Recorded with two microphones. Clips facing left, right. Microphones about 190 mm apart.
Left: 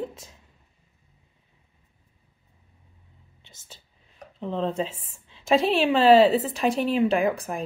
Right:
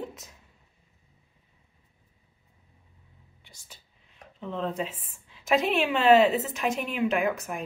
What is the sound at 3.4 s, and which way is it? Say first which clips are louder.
Whispering: left 3 dB; 25° left (ahead or behind).